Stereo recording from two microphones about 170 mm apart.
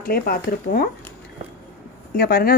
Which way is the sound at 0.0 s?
60° left (ahead or behind).